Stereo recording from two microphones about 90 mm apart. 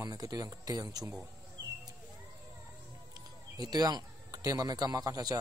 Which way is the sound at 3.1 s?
50° right (ahead or behind).